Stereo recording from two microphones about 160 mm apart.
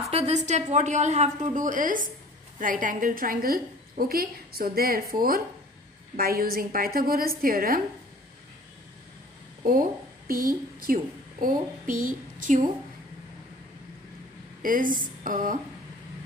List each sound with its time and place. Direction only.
0.1 s a woman's voice: 40° right (ahead or behind); by 7.8 s 65° right (ahead or behind)
9.7 s a woman's voice: 65° right (ahead or behind)
14.6 s speech: 60° right (ahead or behind)